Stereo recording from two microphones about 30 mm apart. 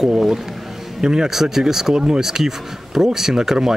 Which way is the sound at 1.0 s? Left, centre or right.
Right.